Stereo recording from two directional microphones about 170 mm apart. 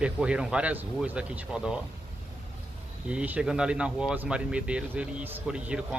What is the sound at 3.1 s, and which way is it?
Speech, 5° right (ahead or behind).